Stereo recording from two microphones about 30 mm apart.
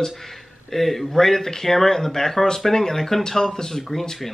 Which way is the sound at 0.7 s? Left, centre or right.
Centre.